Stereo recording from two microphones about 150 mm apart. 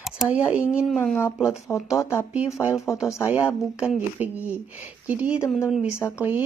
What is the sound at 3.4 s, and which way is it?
A woman's voice, 5° right (ahead or behind).